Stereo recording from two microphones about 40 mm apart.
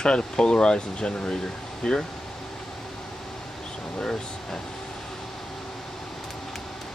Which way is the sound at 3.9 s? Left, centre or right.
Centre.